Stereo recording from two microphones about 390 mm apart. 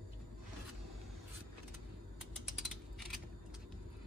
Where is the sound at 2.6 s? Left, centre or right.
Centre.